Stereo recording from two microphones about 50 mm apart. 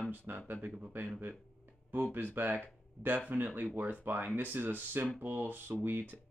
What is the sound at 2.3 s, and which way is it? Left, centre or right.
Speech, right.